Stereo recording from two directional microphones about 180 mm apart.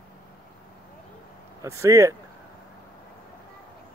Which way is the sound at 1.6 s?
15° right (ahead or behind).